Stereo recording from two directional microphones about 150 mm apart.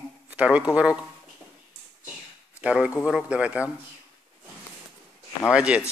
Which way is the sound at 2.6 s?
10° right (ahead or behind).